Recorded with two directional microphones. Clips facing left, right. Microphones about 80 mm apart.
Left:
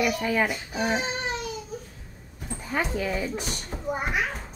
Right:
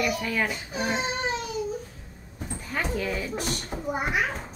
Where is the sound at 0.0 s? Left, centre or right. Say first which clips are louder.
Left 2 dB; centre.